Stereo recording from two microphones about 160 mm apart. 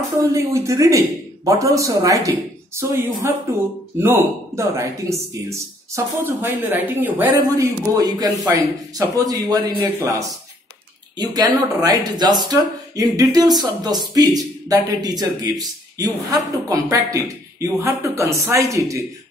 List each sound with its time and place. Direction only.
0.3 s a man's voice: 20° right (ahead or behind)